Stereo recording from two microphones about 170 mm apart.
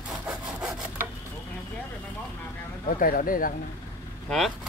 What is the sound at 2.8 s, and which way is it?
Speech, 55° left (ahead or behind).